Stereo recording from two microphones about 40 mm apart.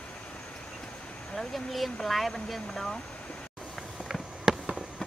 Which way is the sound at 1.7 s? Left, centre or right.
Centre.